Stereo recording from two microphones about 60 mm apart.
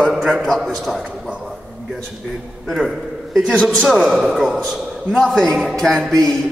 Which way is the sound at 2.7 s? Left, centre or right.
Centre.